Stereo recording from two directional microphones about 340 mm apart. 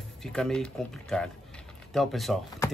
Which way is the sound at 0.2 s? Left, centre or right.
Centre.